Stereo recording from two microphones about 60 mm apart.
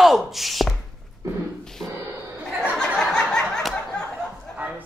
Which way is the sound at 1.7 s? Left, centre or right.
Centre.